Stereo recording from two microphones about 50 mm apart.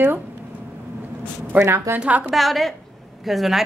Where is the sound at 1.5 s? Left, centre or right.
Right.